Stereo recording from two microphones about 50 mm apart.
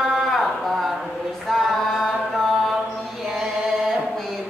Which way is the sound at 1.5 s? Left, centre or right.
Centre.